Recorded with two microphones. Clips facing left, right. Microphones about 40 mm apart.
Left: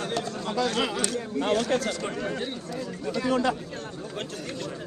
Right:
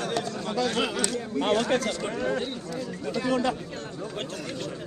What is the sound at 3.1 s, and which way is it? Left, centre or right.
Speech, left.